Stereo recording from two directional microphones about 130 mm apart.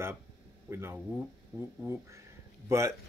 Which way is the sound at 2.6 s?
20° right (ahead or behind).